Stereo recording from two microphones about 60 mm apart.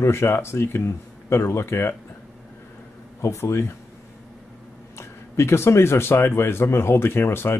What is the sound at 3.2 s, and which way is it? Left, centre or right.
Speech, left.